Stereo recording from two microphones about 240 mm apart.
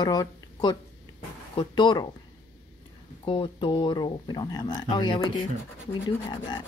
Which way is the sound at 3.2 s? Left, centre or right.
Centre.